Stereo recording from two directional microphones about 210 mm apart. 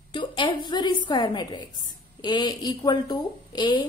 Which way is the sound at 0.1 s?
20° left (ahead or behind).